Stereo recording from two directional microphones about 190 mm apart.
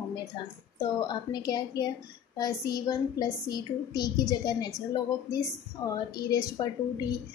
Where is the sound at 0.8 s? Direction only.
20° left (ahead or behind).